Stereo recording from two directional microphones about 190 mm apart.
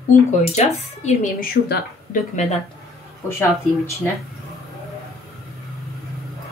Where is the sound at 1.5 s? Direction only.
50° left (ahead or behind).